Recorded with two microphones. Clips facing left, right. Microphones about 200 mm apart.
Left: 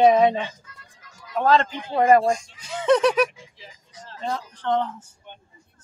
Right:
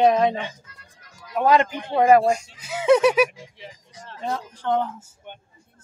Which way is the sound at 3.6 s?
65° right (ahead or behind).